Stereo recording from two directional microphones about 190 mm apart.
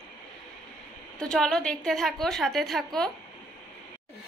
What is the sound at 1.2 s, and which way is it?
A woman's voice, 5° left (ahead or behind).